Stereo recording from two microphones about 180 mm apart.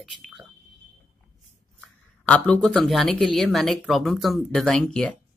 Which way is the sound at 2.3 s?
5° left (ahead or behind).